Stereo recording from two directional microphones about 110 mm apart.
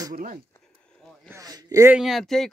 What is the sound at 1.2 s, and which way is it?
Speech, 30° right (ahead or behind).